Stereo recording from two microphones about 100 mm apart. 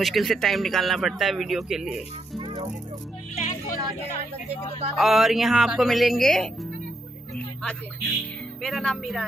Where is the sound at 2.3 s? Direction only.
60° right (ahead or behind).